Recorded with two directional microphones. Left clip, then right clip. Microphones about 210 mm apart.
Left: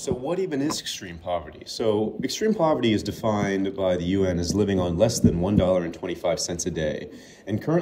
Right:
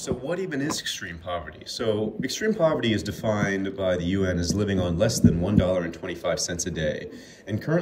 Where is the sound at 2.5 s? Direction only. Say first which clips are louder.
Left 1 dB; centre (ahead or behind).